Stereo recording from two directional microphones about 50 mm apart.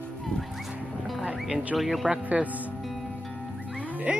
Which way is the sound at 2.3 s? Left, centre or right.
Centre.